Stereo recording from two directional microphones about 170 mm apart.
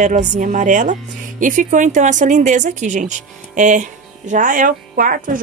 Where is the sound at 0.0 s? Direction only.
45° right (ahead or behind).